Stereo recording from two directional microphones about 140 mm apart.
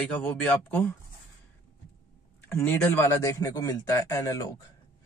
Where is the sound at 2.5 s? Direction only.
15° left (ahead or behind).